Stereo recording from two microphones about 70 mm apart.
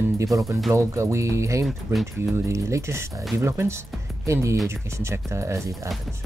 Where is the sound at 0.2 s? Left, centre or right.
Right.